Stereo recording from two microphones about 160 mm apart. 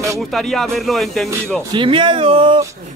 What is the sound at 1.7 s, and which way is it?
Speech, 30° right (ahead or behind).